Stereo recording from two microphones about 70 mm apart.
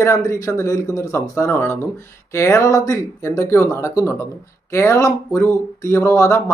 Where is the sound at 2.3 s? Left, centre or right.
Left.